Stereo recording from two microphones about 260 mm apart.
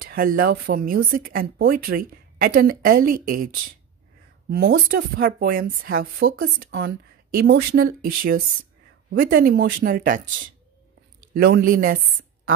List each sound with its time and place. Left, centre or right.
0.0 s speech: right
9.1 s speech: right
11.3 s speech: right